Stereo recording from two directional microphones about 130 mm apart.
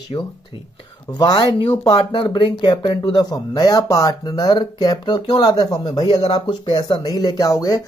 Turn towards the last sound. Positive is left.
turn(degrees=25)  # may be behind; listen again after turning